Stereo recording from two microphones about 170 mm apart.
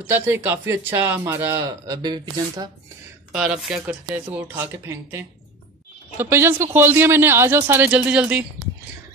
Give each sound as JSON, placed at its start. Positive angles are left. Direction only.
{"t": 0.1, "sound": "speech", "side_deg": -15}
{"t": 3.3, "sound": "speech", "side_deg": -5}